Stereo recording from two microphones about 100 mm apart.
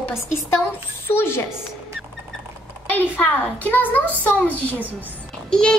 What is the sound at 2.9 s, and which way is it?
A child's voice, 20° left (ahead or behind).